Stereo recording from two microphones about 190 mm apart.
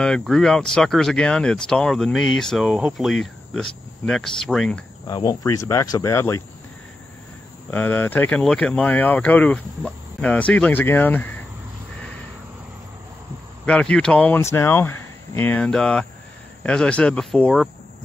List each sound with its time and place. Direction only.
0.0 s speech: 5° left (ahead or behind)
5.0 s speech: 20° left (ahead or behind)
7.7 s speech: 10° left (ahead or behind)
13.7 s speech: 5° left (ahead or behind)